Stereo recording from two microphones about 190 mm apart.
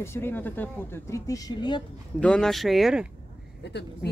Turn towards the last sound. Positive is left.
turn(degrees=60)  # may be behind; listen again after turning